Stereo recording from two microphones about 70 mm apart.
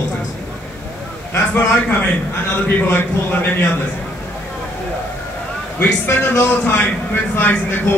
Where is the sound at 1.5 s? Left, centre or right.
Left.